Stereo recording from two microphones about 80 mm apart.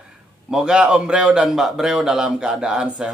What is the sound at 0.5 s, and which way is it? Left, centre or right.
A man's voice, centre.